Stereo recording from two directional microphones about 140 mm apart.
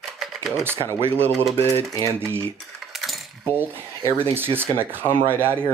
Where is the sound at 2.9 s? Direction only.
Centre (ahead or behind).